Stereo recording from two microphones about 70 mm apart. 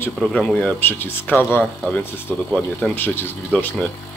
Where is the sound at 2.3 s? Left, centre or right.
Centre.